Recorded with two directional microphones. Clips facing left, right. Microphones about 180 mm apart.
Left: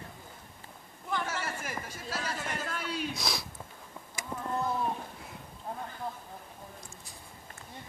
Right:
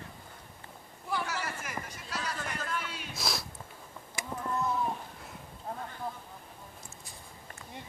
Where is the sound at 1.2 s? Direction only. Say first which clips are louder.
Left 1 dB; 30° left (ahead or behind).